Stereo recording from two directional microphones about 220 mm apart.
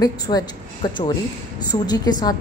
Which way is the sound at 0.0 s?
15° left (ahead or behind).